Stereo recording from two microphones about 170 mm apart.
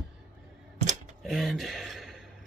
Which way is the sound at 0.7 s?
45° right (ahead or behind).